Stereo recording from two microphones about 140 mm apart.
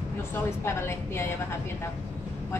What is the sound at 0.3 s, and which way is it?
Speech, 15° left (ahead or behind).